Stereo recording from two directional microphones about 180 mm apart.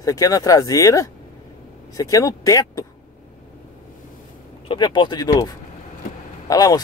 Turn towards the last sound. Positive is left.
turn(degrees=20)  # may be behind; listen again after turning